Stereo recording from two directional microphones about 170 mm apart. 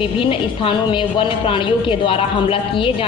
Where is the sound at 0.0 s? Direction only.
30° left (ahead or behind).